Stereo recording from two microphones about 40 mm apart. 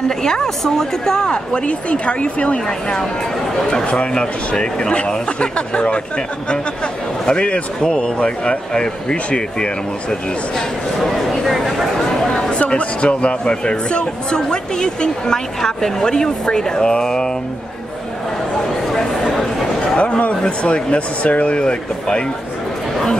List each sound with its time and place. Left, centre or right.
0.1 s a man's voice: centre
11.0 s speech: centre
12.0 s a man's voice: centre
20.0 s a man's voice: left